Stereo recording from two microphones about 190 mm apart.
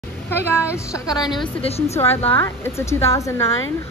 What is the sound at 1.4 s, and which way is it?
Speech, 30° left (ahead or behind).